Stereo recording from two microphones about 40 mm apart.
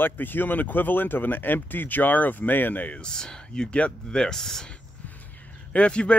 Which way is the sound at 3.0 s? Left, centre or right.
Centre.